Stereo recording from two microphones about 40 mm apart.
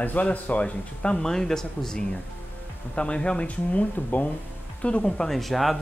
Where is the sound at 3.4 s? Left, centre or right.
Left.